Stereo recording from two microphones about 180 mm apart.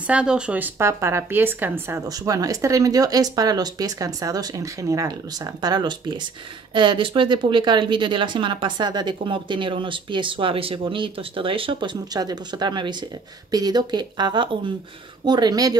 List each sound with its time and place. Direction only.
0.0 s speech: 5° right (ahead or behind); by 15.7 s 20° right (ahead or behind)